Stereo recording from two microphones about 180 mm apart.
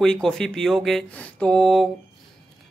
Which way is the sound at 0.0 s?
5° left (ahead or behind).